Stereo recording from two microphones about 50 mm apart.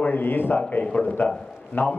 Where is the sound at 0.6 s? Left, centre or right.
Left.